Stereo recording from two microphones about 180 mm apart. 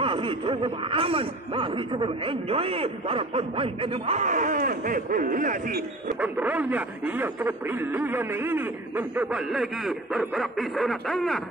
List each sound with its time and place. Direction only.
0.0 s a man's voice: 30° right (ahead or behind); by 6.1 s 50° right (ahead or behind)
6.2 s speech: 10° right (ahead or behind)